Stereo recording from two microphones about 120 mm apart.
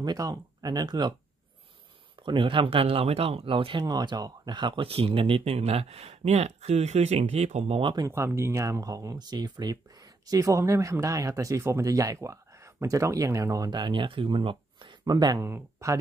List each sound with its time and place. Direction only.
0.0 s speech: 30° right (ahead or behind)
2.2 s speech: 45° right (ahead or behind)
8.1 s speech: 20° right (ahead or behind)